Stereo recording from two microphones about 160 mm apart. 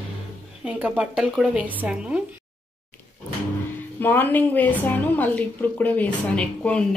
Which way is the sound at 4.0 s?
10° left (ahead or behind).